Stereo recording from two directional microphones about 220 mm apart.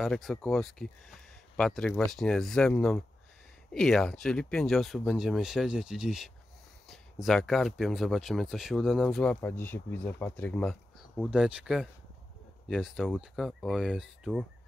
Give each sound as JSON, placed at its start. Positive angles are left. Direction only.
{"t": 0.0, "sound": "speech", "side_deg": 0}